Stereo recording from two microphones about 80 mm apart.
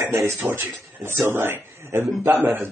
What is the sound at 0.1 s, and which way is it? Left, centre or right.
A man's voice, right.